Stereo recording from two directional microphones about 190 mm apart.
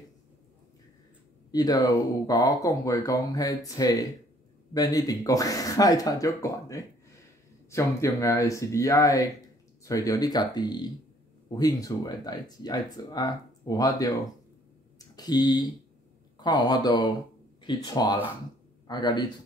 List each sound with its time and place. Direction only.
1.5 s speech: 20° left (ahead or behind)